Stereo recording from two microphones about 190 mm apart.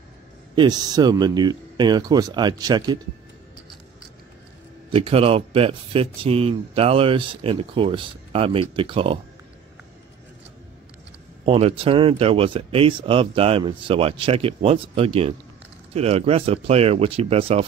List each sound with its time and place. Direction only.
0.6 s speech: 20° right (ahead or behind)
4.9 s speech: 30° right (ahead or behind)
11.4 s speech: 30° right (ahead or behind)